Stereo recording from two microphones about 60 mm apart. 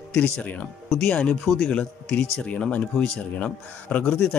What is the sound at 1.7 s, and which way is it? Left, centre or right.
A man's voice, centre.